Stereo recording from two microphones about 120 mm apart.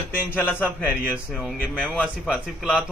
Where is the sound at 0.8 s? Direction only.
5° right (ahead or behind).